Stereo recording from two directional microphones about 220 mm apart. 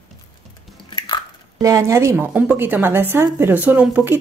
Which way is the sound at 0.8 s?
20° left (ahead or behind).